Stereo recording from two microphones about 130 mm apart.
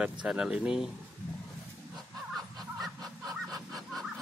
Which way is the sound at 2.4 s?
Centre (ahead or behind).